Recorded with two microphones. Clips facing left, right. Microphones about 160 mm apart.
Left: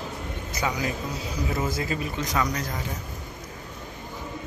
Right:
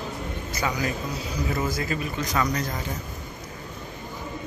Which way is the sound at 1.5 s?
25° left (ahead or behind).